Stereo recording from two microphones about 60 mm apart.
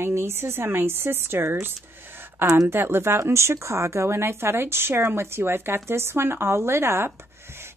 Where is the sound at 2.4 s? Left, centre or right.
Right.